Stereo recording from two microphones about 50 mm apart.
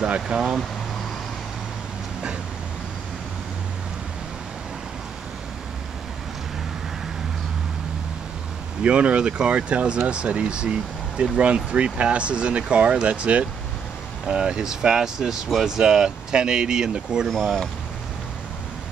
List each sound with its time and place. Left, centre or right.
0.0 s speech: centre
8.8 s speech: right
17.3 s speech: centre